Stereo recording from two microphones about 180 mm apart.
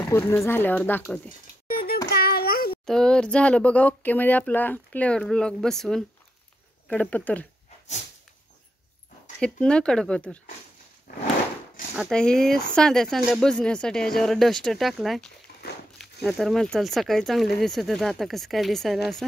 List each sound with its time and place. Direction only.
0.1 s speech: 15° left (ahead or behind)
1.7 s child singing: 55° left (ahead or behind)
2.9 s speech: 5° left (ahead or behind)
9.4 s speech: 5° left (ahead or behind)
12.0 s speech: 5° left (ahead or behind)